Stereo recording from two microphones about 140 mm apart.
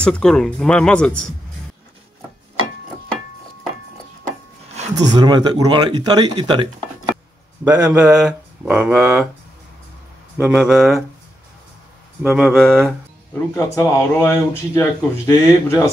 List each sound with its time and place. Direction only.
0.0 s speech: 5° left (ahead or behind)
4.9 s speech: 30° right (ahead or behind)
7.6 s speech: 10° right (ahead or behind)
10.5 s speech: 5° right (ahead or behind)
12.2 s speech: 10° right (ahead or behind)
12.6 s a sound: 5° left (ahead or behind)
13.6 s speech: 15° left (ahead or behind)